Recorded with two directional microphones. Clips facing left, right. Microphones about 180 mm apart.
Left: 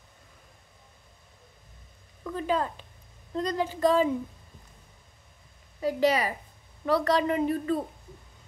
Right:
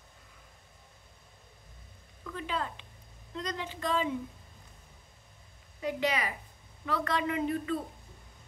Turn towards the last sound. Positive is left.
turn(degrees=40)  # may be behind; listen again after turning